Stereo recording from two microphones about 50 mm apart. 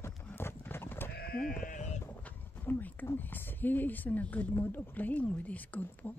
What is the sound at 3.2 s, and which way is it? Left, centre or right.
Speech, left.